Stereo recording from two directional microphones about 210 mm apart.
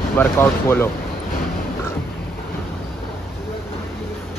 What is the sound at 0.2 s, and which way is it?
Speech, 10° left (ahead or behind).